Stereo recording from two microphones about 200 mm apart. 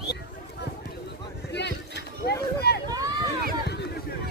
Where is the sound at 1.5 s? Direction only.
60° left (ahead or behind).